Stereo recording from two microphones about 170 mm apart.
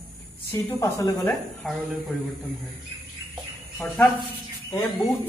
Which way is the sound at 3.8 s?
10° left (ahead or behind).